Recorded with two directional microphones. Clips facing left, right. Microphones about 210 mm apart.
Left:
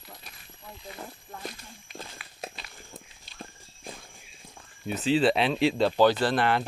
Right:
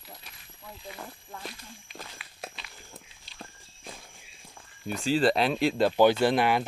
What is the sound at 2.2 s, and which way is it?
Walk, 45° left (ahead or behind).